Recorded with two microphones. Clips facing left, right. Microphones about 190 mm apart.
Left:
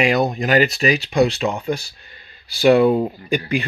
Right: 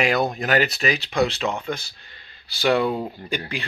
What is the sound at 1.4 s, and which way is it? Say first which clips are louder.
Speech: left 4 dB; 15° left (ahead or behind).